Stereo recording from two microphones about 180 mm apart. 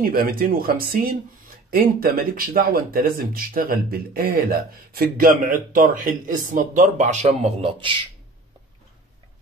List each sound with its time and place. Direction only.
0.0 s speech: 50° right (ahead or behind); by 7.9 s 30° right (ahead or behind)